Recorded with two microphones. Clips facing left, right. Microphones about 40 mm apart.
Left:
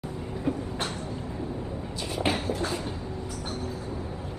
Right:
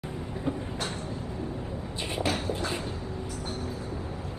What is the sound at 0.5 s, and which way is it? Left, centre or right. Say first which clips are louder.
Train: left 3 dB; right.